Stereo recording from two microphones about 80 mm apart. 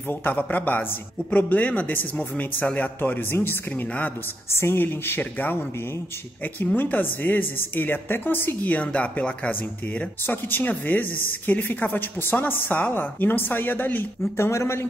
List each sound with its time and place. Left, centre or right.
0.1 s a woman's voice: left
10.2 s a woman's voice: left